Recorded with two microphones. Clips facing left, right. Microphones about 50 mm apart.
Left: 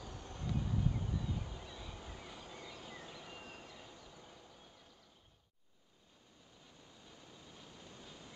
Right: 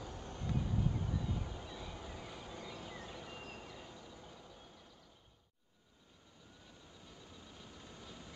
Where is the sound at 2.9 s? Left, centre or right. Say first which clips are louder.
Right 2 dB; right.